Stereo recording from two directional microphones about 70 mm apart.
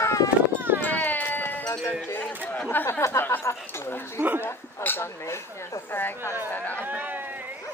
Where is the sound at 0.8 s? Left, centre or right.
Left.